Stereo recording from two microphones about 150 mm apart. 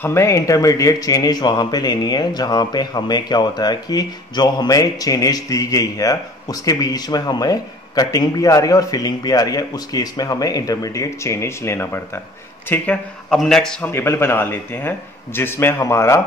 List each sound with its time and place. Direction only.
0.0 s speech: 20° left (ahead or behind)
13.9 s a man's voice: 15° left (ahead or behind)